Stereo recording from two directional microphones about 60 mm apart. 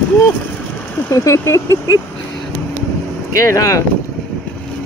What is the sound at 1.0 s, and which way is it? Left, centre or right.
Speech, left.